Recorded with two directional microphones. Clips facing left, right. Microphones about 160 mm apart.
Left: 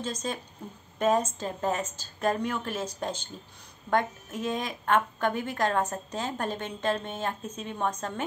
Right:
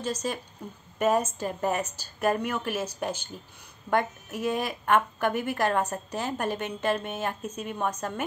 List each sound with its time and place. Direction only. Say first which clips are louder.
0.9 s a woman's voice: right 1 dB; 10° right (ahead or behind)